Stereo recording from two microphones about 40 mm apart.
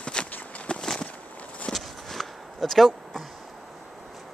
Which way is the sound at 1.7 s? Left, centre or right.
Centre.